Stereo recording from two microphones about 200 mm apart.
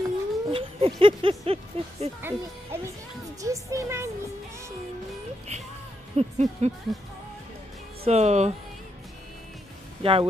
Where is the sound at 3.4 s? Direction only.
15° right (ahead or behind).